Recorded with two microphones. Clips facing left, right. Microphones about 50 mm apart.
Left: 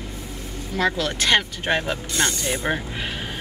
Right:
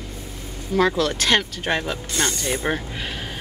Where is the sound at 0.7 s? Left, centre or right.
Centre.